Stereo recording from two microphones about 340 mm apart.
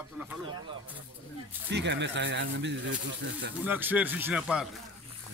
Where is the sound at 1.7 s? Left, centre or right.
Right.